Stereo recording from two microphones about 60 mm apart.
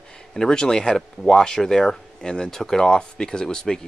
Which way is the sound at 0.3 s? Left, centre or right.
Centre.